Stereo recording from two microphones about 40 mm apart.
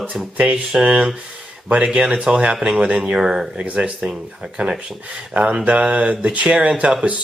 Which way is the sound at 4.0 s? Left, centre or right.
Centre.